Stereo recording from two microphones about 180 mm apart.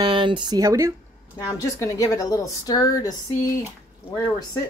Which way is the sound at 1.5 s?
20° left (ahead or behind).